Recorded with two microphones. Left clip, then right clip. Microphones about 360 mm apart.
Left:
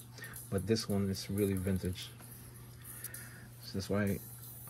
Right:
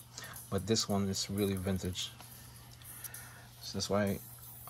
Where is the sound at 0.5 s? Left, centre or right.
Right.